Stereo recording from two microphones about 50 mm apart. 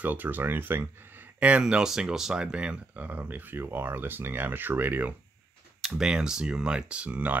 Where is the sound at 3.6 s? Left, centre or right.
Right.